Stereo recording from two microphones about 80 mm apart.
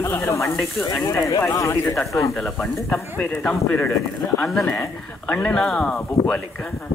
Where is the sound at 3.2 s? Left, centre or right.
Centre.